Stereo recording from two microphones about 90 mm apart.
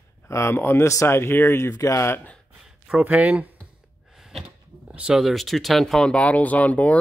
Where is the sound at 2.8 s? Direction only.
15° right (ahead or behind).